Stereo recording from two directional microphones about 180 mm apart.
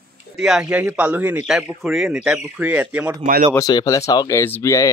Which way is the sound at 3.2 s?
45° right (ahead or behind).